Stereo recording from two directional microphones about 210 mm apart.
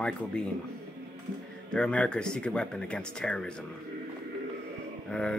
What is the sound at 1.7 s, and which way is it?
Speech, 5° left (ahead or behind).